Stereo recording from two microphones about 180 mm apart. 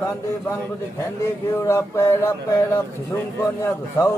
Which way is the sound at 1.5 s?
15° left (ahead or behind).